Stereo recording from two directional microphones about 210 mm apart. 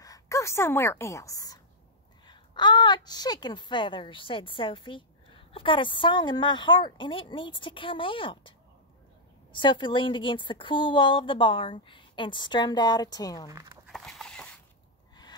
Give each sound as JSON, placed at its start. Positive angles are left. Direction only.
{"t": 0.0, "sound": "a woman's voice", "side_deg": 15}
{"t": 13.5, "sound": "speech", "side_deg": -15}
{"t": 13.8, "sound": "a sound", "side_deg": 0}